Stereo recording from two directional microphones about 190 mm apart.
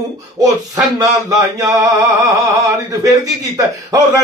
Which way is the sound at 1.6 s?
15° right (ahead or behind).